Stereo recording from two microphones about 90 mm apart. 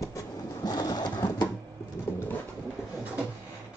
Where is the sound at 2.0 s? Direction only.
30° left (ahead or behind).